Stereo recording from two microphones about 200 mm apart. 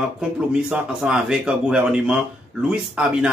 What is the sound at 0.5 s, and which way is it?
Speech, 5° right (ahead or behind).